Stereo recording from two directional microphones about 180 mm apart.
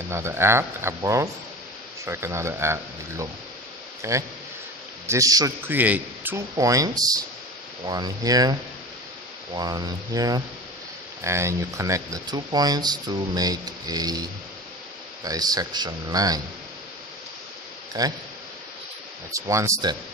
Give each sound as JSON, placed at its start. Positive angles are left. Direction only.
{"t": 0.1, "sound": "speech", "side_deg": -15}
{"t": 9.6, "sound": "speech", "side_deg": -20}
{"t": 15.2, "sound": "speech", "side_deg": -20}
{"t": 18.0, "sound": "speech", "side_deg": -20}
{"t": 19.3, "sound": "speech", "side_deg": -15}